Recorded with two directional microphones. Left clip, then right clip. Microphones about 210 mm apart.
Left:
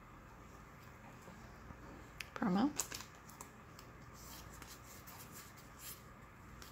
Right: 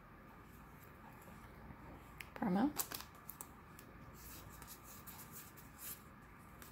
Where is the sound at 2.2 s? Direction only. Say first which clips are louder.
Left 1 dB; 10° left (ahead or behind).